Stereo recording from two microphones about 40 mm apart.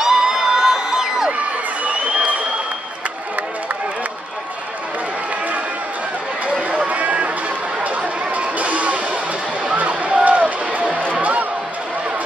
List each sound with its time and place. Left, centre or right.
0.0 s crowd: centre
1.9 s crowd: right
6.9 s run: right
7.8 s chatter: right
9.8 s a sound: right
11.1 s music: right